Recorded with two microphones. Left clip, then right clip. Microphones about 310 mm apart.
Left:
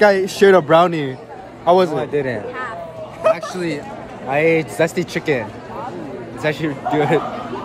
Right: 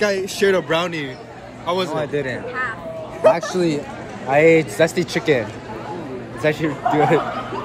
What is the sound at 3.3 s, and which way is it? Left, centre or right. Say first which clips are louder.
Speech: right 3 dB; centre.